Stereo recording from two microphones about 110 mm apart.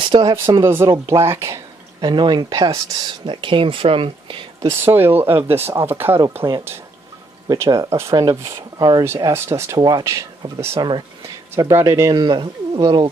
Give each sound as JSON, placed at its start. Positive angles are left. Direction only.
{"t": 0.0, "sound": "speech", "side_deg": -50}
{"t": 0.5, "sound": "speech", "side_deg": -25}
{"t": 2.0, "sound": "speech", "side_deg": -45}
{"t": 3.3, "sound": "speech", "side_deg": -50}
{"t": 4.6, "sound": "speech", "side_deg": -20}
{"t": 7.4, "sound": "speech", "side_deg": -25}
{"t": 9.8, "sound": "speech", "side_deg": -40}
{"t": 10.8, "sound": "speech", "side_deg": -40}
{"t": 11.5, "sound": "speech", "side_deg": -25}
{"t": 12.2, "sound": "speech", "side_deg": -45}